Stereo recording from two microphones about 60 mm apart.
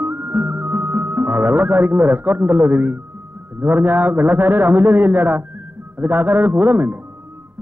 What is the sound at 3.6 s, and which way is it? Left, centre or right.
A man's voice, right.